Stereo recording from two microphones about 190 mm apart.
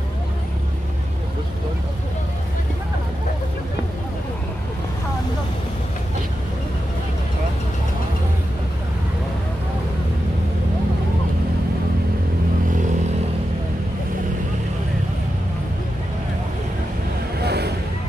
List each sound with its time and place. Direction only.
17.4 s vehicle: 60° right (ahead or behind)